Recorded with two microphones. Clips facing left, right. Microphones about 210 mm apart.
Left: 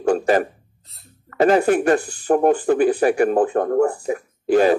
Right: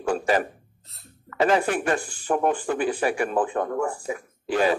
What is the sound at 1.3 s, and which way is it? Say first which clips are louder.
Speech: left 6 dB; 45° left (ahead or behind).